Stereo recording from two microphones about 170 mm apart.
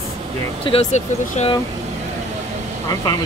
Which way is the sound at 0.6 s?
35° left (ahead or behind).